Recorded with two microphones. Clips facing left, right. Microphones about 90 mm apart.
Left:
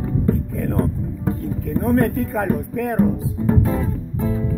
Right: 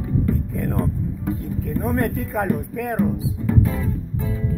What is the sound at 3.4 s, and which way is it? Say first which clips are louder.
Music: left 3 dB; 40° left (ahead or behind).